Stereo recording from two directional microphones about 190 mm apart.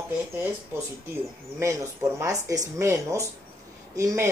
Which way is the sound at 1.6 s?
15° right (ahead or behind).